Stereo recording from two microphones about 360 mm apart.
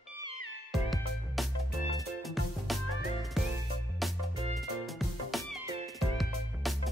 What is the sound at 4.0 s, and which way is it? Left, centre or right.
Music, centre.